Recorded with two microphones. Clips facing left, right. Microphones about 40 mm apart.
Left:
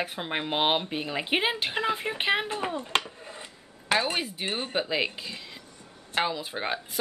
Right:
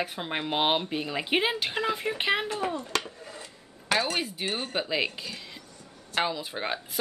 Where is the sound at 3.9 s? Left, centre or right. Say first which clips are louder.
Left 1 dB; centre.